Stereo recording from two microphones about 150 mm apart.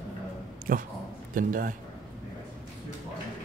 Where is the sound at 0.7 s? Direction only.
65° right (ahead or behind).